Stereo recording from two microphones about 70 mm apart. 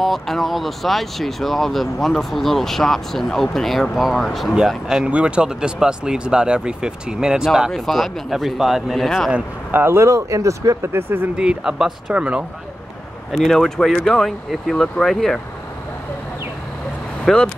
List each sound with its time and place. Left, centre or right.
0.0 s speech: centre
7.7 s speech: centre
9.7 s speech: right
10.8 s speech: right
11.3 s speech: centre
13.4 s speech: centre
17.2 s vehicle: centre